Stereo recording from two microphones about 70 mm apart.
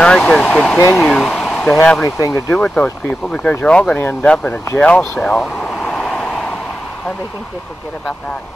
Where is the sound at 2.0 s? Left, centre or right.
Left.